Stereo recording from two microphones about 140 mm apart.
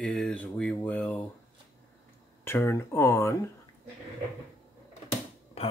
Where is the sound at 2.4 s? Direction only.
15° left (ahead or behind).